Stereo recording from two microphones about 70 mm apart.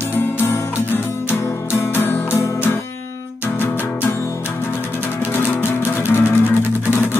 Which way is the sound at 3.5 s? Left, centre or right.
Left.